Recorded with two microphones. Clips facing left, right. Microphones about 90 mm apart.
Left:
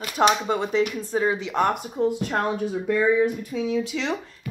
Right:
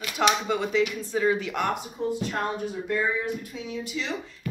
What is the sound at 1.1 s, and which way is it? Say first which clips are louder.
Speech: even; 25° left (ahead or behind).